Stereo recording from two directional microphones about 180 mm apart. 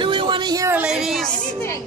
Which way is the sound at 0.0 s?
25° right (ahead or behind).